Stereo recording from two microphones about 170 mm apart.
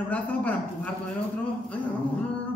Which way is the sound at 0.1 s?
10° left (ahead or behind).